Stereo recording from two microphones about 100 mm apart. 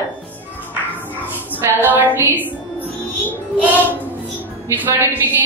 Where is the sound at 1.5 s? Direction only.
20° right (ahead or behind).